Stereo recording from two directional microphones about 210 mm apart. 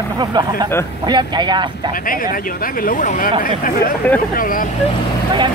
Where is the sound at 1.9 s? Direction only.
40° left (ahead or behind).